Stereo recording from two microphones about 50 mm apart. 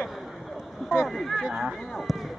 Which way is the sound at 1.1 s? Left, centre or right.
Centre.